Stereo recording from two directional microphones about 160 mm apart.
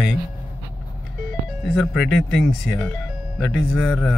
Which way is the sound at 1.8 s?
Centre (ahead or behind).